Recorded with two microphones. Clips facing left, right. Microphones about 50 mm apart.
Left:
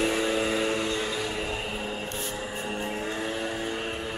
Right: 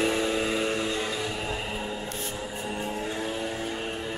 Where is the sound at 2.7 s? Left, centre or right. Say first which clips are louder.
Right 1 dB; centre.